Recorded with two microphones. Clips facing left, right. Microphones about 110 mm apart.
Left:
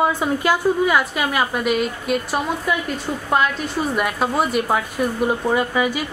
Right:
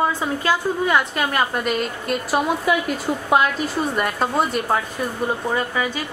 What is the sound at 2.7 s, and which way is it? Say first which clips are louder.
A woman's voice: right 2 dB; 5° right (ahead or behind).